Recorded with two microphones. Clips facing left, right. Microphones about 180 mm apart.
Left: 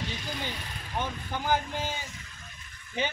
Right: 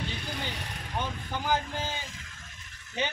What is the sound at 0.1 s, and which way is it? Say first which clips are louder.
Speech: left 1 dB; 60° right (ahead or behind).